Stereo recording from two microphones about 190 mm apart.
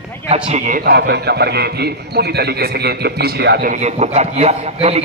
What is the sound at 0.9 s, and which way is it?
A man's voice, 60° right (ahead or behind).